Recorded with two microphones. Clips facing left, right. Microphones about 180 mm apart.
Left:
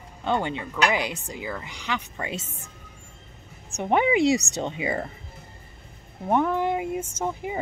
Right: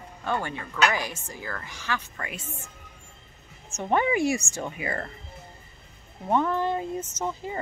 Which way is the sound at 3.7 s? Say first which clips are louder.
Left 3 dB; 15° left (ahead or behind).